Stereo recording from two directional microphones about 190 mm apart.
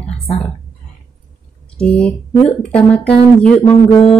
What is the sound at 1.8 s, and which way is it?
Speech, 5° left (ahead or behind).